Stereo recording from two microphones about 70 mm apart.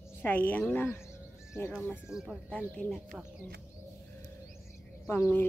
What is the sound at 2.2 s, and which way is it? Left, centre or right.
Speech, centre.